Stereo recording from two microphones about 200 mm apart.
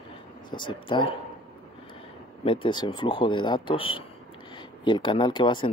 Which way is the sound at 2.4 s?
25° left (ahead or behind).